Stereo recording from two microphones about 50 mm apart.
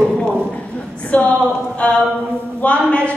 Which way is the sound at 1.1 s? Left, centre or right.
Left.